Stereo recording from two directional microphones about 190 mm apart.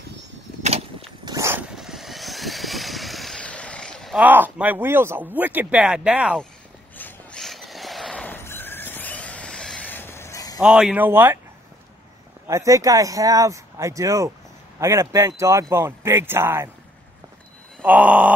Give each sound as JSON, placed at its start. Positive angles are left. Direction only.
{"t": 0.6, "sound": "vehicle", "side_deg": -35}
{"t": 1.2, "sound": "vehicle", "side_deg": -15}
{"t": 7.0, "sound": "vehicle", "side_deg": 10}
{"t": 10.6, "sound": "speech", "side_deg": -5}
{"t": 12.4, "sound": "speech", "side_deg": -15}
{"t": 17.8, "sound": "speech", "side_deg": -10}